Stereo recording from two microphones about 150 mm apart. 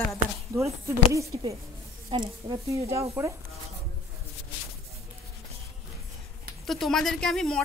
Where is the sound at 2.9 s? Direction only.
20° right (ahead or behind).